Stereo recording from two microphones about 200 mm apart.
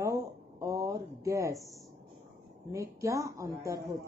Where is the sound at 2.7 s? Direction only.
15° right (ahead or behind).